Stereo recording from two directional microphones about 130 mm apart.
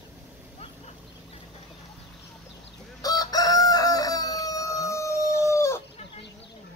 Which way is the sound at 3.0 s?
30° left (ahead or behind).